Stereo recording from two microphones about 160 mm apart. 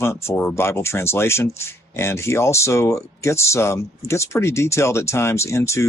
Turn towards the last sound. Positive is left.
turn(degrees=15)  # may be behind; listen again after turning